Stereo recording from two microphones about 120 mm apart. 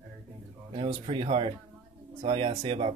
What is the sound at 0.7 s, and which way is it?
Speech, 50° right (ahead or behind).